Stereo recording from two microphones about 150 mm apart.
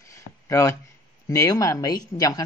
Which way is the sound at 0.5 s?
20° left (ahead or behind).